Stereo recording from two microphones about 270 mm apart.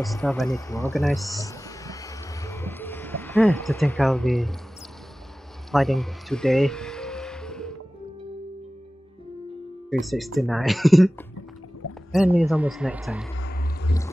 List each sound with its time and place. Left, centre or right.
0.0 s speech: centre
0.9 s a man's voice: centre
1.2 s a sound: centre
5.7 s music: centre
10.0 s a man's voice: centre
13.4 s a sound: left